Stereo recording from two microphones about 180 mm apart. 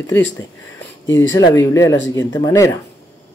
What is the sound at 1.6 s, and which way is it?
Speech, 15° left (ahead or behind).